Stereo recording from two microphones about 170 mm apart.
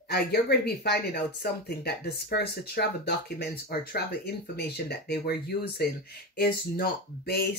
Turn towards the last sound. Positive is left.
turn(degrees=65)  # may be behind; listen again after turning